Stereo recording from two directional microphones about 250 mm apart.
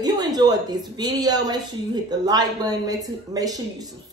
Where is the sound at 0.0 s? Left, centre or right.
Centre.